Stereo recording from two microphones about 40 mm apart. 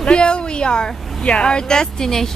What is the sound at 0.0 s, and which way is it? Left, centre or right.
Speech, left.